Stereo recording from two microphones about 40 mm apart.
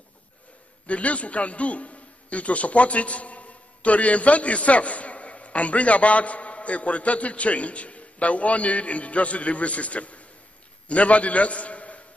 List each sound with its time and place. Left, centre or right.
0.8 s a man's voice: left